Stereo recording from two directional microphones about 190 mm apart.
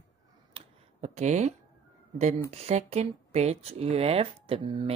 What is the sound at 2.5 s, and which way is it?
Speech, 35° right (ahead or behind).